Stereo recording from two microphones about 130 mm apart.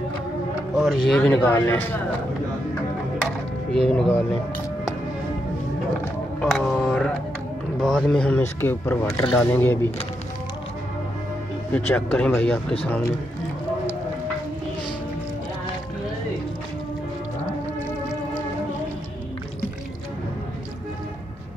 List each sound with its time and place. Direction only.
0.7 s speech: centre (ahead or behind)
3.7 s speech: 10° left (ahead or behind)
6.4 s a sound: 5° left (ahead or behind)
7.8 s a man's voice: 5° left (ahead or behind)
8.4 s speech: 15° left (ahead or behind)
11.9 s speech: 15° left (ahead or behind)